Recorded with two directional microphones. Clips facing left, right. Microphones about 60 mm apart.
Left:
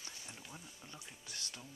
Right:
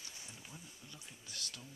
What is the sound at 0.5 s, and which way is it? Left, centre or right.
Speech, left.